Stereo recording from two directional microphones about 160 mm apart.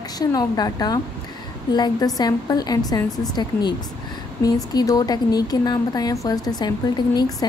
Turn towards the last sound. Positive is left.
turn(degrees=25)  # may be behind; listen again after turning